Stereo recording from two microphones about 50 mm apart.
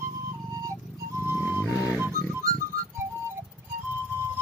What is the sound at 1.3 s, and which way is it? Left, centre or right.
Music, right.